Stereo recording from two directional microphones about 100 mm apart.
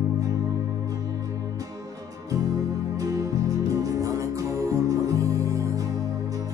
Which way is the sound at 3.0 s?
35° right (ahead or behind).